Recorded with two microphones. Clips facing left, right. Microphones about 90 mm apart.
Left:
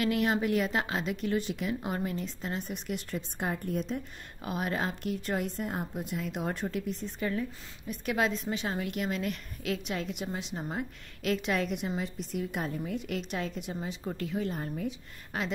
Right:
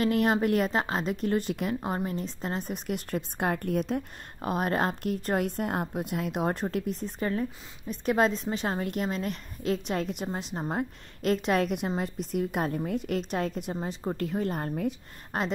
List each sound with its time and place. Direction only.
0.0 s a woman's voice: 40° right (ahead or behind)
0.7 s a woman's voice: 35° right (ahead or behind); by 6.6 s 50° right (ahead or behind)
6.7 s a woman's voice: 40° right (ahead or behind)